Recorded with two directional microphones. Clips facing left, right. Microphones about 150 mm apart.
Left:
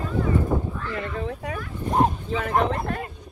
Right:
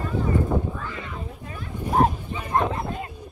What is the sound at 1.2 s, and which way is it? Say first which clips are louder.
Speech: left 6 dB; 85° left.